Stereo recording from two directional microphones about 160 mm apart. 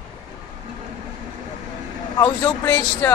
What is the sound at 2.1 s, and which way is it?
Speech, 20° left (ahead or behind).